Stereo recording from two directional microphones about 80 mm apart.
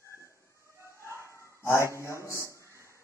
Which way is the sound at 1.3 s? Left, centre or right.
Left.